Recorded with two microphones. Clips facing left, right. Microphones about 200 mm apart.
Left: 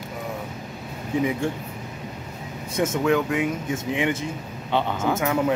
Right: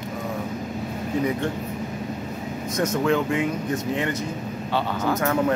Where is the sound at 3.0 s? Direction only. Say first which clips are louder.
Left 1 dB; 5° left (ahead or behind).